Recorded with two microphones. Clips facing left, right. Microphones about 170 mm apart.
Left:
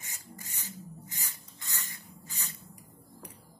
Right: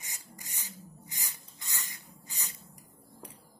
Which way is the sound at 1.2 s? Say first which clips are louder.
Left 1 dB; 15° right (ahead or behind).